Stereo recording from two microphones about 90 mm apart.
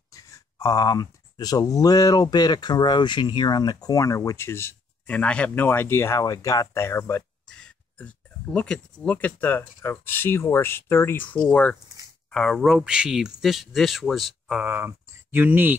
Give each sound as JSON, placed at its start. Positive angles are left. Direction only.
{"t": 0.1, "sound": "speech", "side_deg": 40}
{"t": 5.0, "sound": "speech", "side_deg": 15}
{"t": 5.5, "sound": "speech", "side_deg": 25}
{"t": 7.4, "sound": "a sound", "side_deg": 10}
{"t": 9.8, "sound": "speech", "side_deg": 25}
{"t": 11.3, "sound": "speech", "side_deg": 10}
{"t": 14.6, "sound": "speech", "side_deg": -20}